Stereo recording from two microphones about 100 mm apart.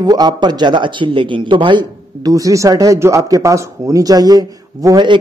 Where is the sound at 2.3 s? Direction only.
35° right (ahead or behind).